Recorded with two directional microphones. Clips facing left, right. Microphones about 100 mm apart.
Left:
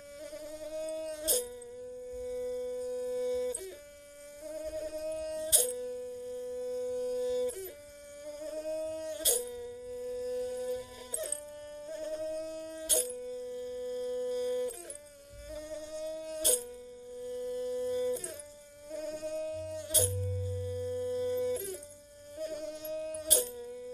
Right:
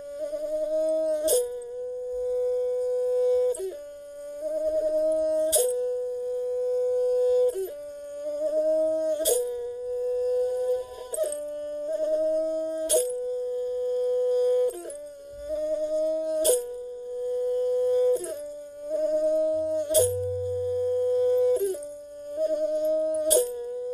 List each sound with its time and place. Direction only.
0.2 s a sound: 45° right (ahead or behind)
1.2 s dog: 50° right (ahead or behind)
2.2 s wind instrument: 45° right (ahead or behind)
4.5 s a sound: 45° right (ahead or behind)
5.8 s music: 45° right (ahead or behind)
8.3 s humming: 45° right (ahead or behind)
11.8 s a sound: 45° right (ahead or behind)
12.9 s wind instrument: 35° right (ahead or behind)
15.5 s a sound: 45° right (ahead or behind)
18.9 s insect: 45° right (ahead or behind)
20.0 s dog: 35° right (ahead or behind)
22.4 s music: 45° right (ahead or behind)
23.3 s dog: 35° right (ahead or behind)